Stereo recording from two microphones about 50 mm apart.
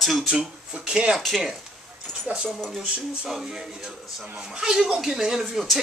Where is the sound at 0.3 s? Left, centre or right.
Centre.